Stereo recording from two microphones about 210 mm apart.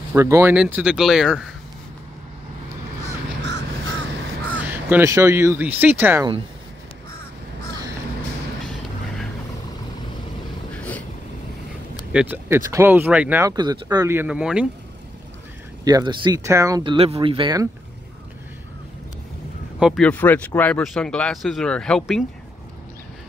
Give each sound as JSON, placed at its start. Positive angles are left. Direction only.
{"t": 0.1, "sound": "speech", "side_deg": -15}
{"t": 4.6, "sound": "speech", "side_deg": -10}
{"t": 10.8, "sound": "vehicle", "side_deg": 5}
{"t": 12.1, "sound": "speech", "side_deg": -5}
{"t": 15.8, "sound": "speech", "side_deg": -20}
{"t": 19.8, "sound": "speech", "side_deg": 0}